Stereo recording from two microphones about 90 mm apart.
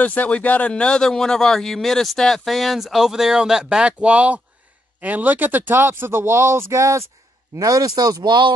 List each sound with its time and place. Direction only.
0.0 s a man's voice: 15° left (ahead or behind); by 7.1 s 35° right (ahead or behind)
7.5 s speech: 45° right (ahead or behind)